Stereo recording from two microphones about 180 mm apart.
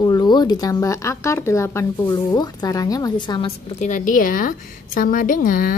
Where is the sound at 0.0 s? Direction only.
25° left (ahead or behind).